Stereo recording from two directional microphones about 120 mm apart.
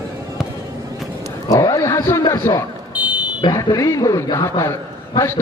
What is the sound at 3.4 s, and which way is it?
A man's voice, 30° left (ahead or behind).